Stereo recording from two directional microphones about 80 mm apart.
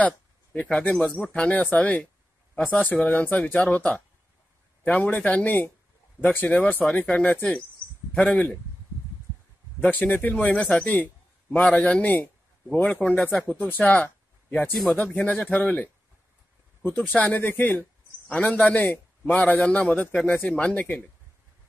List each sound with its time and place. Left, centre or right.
0.0 s a man's voice: centre
9.8 s a man's voice: centre
14.7 s speech: centre
15.0 s a man's voice: centre